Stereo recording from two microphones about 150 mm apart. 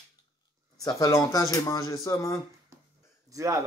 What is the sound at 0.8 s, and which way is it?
Speech, 20° left (ahead or behind).